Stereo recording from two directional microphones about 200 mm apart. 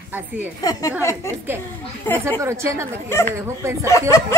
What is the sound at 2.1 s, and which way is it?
Speech, 10° left (ahead or behind).